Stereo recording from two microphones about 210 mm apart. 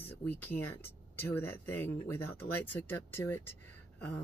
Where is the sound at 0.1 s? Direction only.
10° left (ahead or behind).